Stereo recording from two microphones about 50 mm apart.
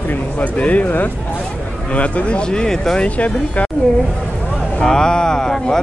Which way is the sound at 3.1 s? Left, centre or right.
Left.